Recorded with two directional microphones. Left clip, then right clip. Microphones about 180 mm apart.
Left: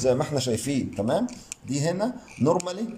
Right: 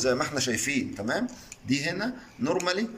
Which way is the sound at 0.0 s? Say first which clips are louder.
Left 2 dB; 25° left (ahead or behind).